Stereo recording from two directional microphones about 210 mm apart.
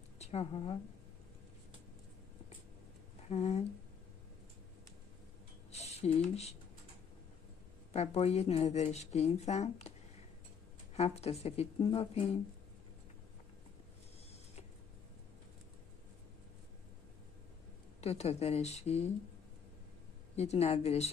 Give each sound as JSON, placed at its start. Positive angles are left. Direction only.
{"t": 0.2, "sound": "a woman's voice", "side_deg": 30}
{"t": 3.3, "sound": "speech", "side_deg": 30}
{"t": 5.7, "sound": "a sound", "side_deg": 30}
{"t": 7.9, "sound": "speech", "side_deg": 30}
{"t": 11.0, "sound": "speech", "side_deg": 30}
{"t": 18.0, "sound": "speech", "side_deg": 30}
{"t": 20.3, "sound": "speech", "side_deg": 30}